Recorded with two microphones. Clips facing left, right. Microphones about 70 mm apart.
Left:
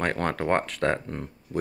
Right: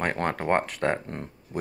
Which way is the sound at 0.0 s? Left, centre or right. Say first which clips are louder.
Left 1 dB; centre.